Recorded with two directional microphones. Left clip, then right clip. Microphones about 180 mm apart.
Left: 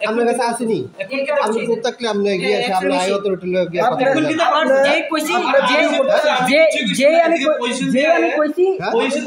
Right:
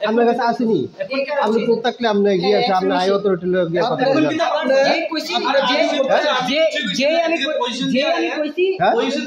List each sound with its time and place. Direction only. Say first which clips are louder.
0.2 s a man's voice: right 1 dB; 35° right (ahead or behind)
1.7 s a man's voice: right 2 dB; 25° right (ahead or behind)
4.0 s a man's voice: left 1 dB; centre (ahead or behind)